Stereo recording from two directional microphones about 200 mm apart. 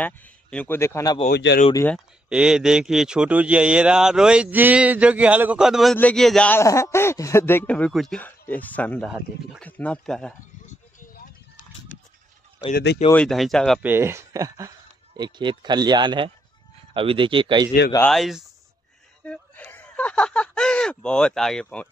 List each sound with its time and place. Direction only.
0.0 s speech: 5° left (ahead or behind)
1.3 s speech: 55° left (ahead or behind)
2.2 s speech: 5° right (ahead or behind)
10.7 s vehicle: 40° left (ahead or behind)
12.7 s speech: 55° left (ahead or behind)
13.1 s speech: 5° left (ahead or behind)
13.8 s speech: 10° right (ahead or behind)
18.1 s speech: centre (ahead or behind)